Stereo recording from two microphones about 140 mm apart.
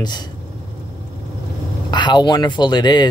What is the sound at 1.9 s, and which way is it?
Speech, 30° left (ahead or behind).